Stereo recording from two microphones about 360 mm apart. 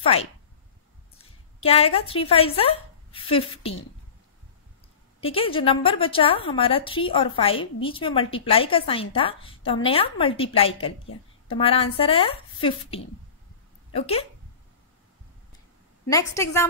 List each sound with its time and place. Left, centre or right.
0.0 s a woman's voice: centre
5.2 s a woman's voice: centre
16.1 s a woman's voice: centre